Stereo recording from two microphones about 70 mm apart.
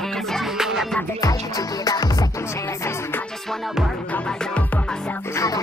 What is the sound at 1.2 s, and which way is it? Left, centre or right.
Music, left.